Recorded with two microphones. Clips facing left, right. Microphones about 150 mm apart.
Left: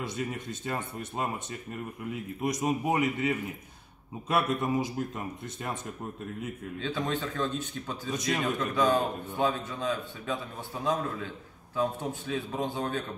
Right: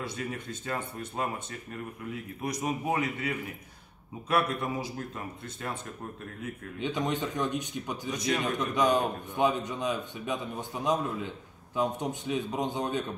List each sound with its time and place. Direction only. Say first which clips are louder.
0.1 s speech: left 2 dB; 20° left (ahead or behind)
6.8 s a man's voice: right 2 dB; 20° right (ahead or behind)